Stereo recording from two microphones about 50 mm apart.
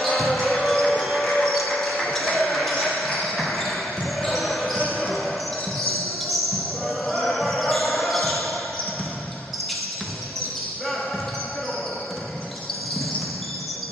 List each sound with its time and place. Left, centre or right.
0.0 s basketball bounce: centre
4.7 s basketball bounce: left
5.8 s basketball bounce: centre